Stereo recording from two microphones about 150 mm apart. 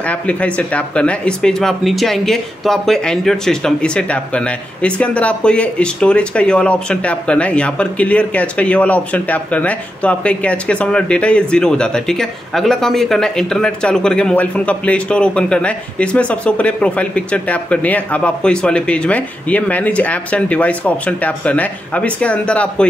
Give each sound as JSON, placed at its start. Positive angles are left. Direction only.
{"t": 0.0, "sound": "speech", "side_deg": 10}